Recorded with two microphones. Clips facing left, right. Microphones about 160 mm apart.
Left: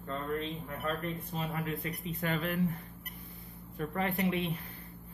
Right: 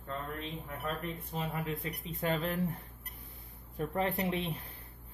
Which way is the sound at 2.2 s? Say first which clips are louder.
Right 2 dB; 30° right (ahead or behind).